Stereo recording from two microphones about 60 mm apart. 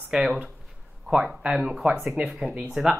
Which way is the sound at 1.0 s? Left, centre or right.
Centre.